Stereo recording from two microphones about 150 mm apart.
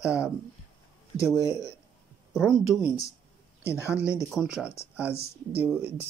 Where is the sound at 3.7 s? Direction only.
20° left (ahead or behind).